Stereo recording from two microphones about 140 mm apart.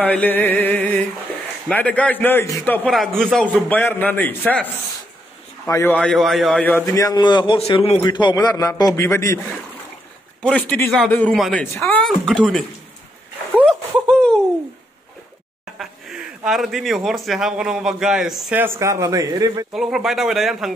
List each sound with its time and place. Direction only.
0.0 s music: 10° left (ahead or behind)
1.7 s a man's voice: 10° left (ahead or behind)
2.9 s a man's voice: centre (ahead or behind)
5.7 s a man's voice: 20° left (ahead or behind)
5.9 s speech: 5° left (ahead or behind)
6.9 s a man's voice: 25° left (ahead or behind); by 8.0 s 45° left (ahead or behind)
8.0 s a man's voice: 30° left (ahead or behind)
10.4 s a man's voice: 10° left (ahead or behind)
12.0 s speech: 5° left (ahead or behind)
13.7 s a sound: 5° left (ahead or behind)
15.8 s a man's voice: centre (ahead or behind)
18.6 s a man's voice: 20° right (ahead or behind)
19.7 s speech: 5° right (ahead or behind)